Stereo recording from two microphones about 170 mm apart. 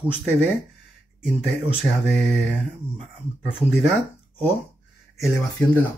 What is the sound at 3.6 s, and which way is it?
Speech, 10° left (ahead or behind).